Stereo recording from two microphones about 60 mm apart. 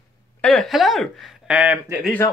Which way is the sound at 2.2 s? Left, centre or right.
Left.